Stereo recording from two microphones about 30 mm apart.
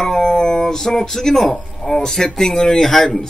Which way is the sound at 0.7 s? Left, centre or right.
Centre.